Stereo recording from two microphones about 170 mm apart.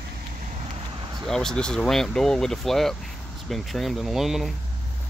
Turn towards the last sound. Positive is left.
turn(degrees=0)  # may be behind; listen again after turning